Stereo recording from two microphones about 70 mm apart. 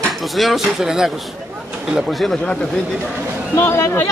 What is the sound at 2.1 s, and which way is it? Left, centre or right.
Speech, centre.